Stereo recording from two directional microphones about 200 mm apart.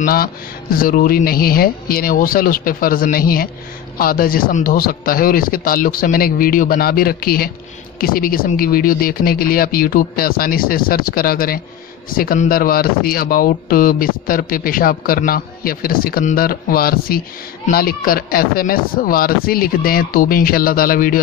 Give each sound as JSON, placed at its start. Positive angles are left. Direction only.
{"t": 0.0, "sound": "speech", "side_deg": 45}